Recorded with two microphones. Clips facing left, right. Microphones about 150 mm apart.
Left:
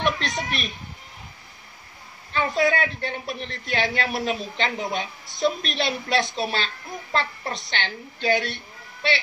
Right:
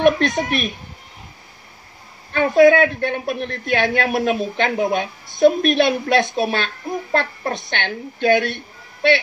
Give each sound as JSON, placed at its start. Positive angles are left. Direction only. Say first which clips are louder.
{"t": 0.0, "sound": "a woman's voice", "louder": "right 10 dB", "side_deg": -55}
{"t": 2.3, "sound": "a woman's voice", "louder": "right 10 dB", "side_deg": -55}